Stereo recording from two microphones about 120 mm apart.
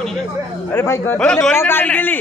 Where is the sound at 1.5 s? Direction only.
20° left (ahead or behind).